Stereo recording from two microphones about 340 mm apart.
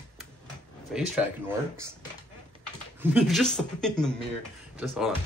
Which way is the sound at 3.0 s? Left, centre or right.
Centre.